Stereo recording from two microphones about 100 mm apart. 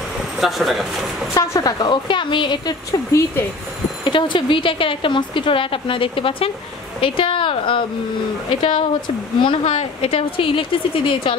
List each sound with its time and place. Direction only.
0.4 s speech: centre (ahead or behind)
1.6 s a woman's voice: 45° left (ahead or behind)
3.1 s speech: 30° left (ahead or behind)
4.0 s speech: 55° left (ahead or behind)